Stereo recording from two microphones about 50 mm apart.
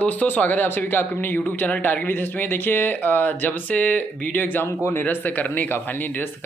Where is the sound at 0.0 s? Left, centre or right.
Left.